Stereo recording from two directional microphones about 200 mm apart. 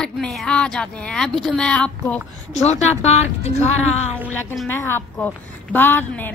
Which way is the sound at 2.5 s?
35° left (ahead or behind).